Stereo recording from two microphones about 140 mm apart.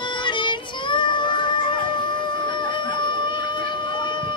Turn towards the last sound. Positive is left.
turn(degrees=35)  # may be behind; listen again after turning